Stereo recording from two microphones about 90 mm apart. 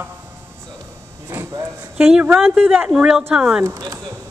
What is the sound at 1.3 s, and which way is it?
Speech, 25° right (ahead or behind).